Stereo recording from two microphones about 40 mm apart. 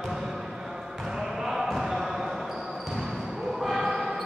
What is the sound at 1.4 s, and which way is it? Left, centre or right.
Basketball bounce, centre.